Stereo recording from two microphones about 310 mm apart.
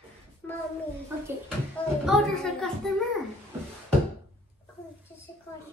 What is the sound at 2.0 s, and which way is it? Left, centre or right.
A child's voice, centre.